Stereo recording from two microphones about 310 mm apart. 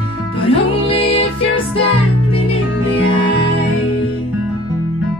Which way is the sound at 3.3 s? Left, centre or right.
Left.